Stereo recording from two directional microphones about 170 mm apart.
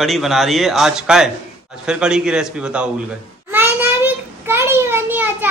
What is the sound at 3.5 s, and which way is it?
Child singing, 10° right (ahead or behind).